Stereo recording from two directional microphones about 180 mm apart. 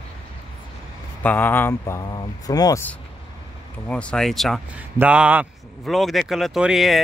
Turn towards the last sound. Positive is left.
turn(degrees=0)  # may be behind; listen again after turning